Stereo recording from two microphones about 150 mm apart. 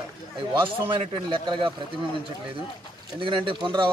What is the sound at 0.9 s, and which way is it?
Speech, 35° right (ahead or behind).